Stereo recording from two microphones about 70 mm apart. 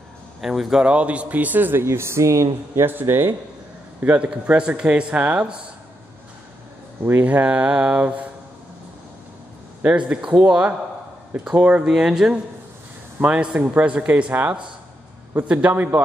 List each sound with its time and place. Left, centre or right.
0.4 s speech: centre; by 4.3 s right
4.3 s speech: centre
7.2 s speech: centre
9.8 s speech: centre
11.9 s speech: centre; by 16.0 s right